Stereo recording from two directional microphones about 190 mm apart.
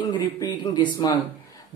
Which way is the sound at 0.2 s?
25° left (ahead or behind).